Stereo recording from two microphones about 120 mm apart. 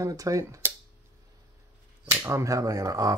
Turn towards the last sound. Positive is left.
turn(degrees=-30)  # may be behind; listen again after turning